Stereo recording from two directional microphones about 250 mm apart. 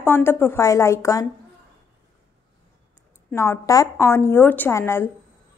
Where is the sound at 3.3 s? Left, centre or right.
Centre.